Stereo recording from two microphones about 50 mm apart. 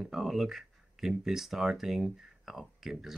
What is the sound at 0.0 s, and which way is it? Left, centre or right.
Speech, centre.